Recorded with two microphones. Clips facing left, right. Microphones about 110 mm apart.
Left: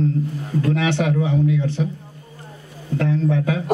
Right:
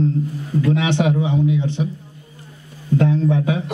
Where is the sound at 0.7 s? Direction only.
20° right (ahead or behind).